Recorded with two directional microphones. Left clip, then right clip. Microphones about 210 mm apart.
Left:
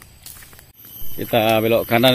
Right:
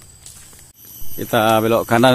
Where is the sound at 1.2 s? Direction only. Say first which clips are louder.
Right 2 dB; 10° right (ahead or behind).